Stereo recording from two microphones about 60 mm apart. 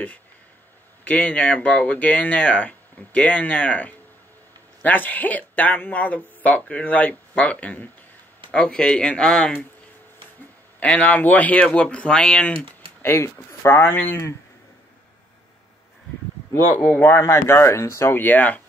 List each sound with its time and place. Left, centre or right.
1.0 s a man's voice: left
10.8 s speech: left
13.0 s speech: left
17.0 s speech: left
18.2 s speech: left